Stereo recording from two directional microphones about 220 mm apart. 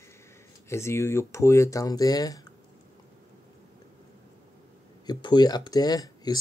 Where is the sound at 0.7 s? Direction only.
10° left (ahead or behind).